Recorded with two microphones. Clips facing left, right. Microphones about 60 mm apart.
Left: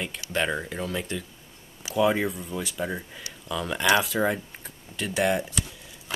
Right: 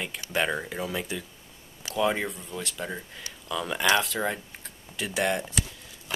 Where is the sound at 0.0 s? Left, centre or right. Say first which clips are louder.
Even; centre.